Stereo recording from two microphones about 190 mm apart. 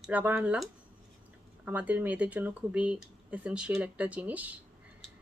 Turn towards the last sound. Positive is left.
turn(degrees=-10)  # may be behind; listen again after turning